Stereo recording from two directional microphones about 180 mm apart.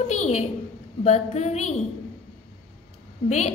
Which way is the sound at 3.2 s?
40° left (ahead or behind).